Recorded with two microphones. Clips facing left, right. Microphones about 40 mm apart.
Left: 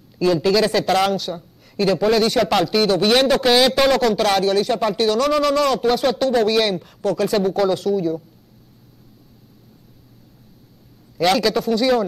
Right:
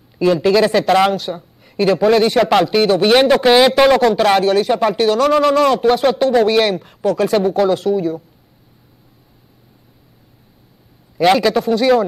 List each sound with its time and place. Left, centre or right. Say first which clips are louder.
0.2 s speech: right 4 dB; centre
11.1 s a man's voice: right 5 dB; centre